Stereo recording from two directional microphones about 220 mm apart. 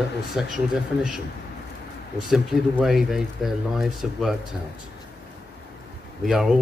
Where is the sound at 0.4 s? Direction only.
5° right (ahead or behind).